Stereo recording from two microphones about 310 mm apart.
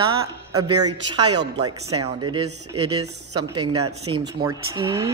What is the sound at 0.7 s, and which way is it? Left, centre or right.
Speech, right.